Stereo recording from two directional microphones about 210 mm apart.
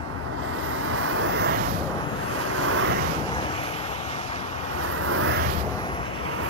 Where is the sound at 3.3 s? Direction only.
25° left (ahead or behind).